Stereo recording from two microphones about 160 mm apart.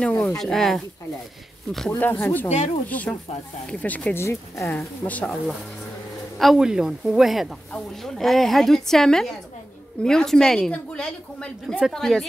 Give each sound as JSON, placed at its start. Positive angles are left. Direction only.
{"t": 0.0, "sound": "speech", "side_deg": 10}
{"t": 1.9, "sound": "speech", "side_deg": 10}
{"t": 2.5, "sound": "speech", "side_deg": 45}
{"t": 2.9, "sound": "speech", "side_deg": 10}
{"t": 6.3, "sound": "speech", "side_deg": 0}